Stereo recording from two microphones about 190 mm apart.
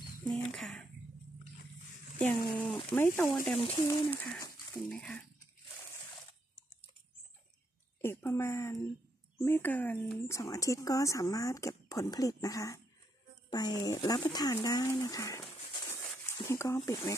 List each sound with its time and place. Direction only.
0.2 s speech: 5° left (ahead or behind)
2.1 s speech: 5° left (ahead or behind)
3.6 s speech: 20° left (ahead or behind)
4.1 s speech: 5° left (ahead or behind)
8.0 s speech: 10° left (ahead or behind)
16.4 s speech: 15° left (ahead or behind)